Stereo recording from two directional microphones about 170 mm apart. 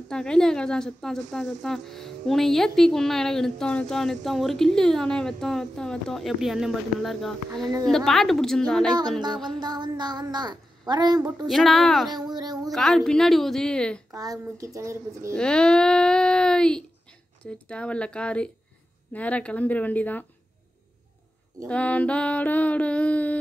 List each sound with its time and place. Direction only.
0.1 s a woman's voice: 5° left (ahead or behind)
9.2 s a woman's voice: 25° right (ahead or behind)
11.4 s a woman's voice: centre (ahead or behind)
12.1 s a woman's voice: 25° right (ahead or behind)
12.7 s a woman's voice: centre (ahead or behind)
14.1 s a woman's voice: 20° right (ahead or behind)
15.3 s a sound: 5° left (ahead or behind)
21.6 s a sound: 10° left (ahead or behind)